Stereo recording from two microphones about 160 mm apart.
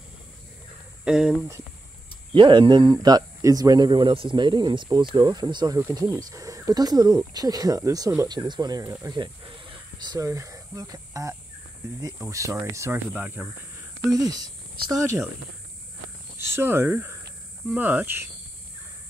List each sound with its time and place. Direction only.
1.0 s speech: 5° right (ahead or behind)
2.3 s speech: 30° right (ahead or behind); by 13.5 s 10° right (ahead or behind)
14.1 s speech: 25° right (ahead or behind)
16.3 s speech: 15° right (ahead or behind)